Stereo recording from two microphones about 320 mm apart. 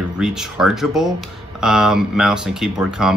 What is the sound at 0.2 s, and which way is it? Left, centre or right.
Speech, centre.